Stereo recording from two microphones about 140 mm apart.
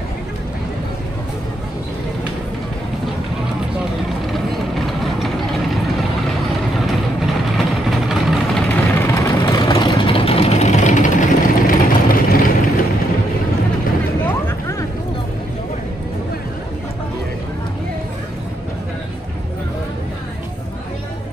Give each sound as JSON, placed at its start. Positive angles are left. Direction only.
{"t": 4.3, "sound": "vehicle", "side_deg": 0}
{"t": 6.9, "sound": "vehicle", "side_deg": 0}
{"t": 14.2, "sound": "a sound", "side_deg": 20}